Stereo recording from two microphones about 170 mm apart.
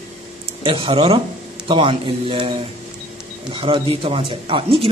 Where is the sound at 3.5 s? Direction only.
30° right (ahead or behind).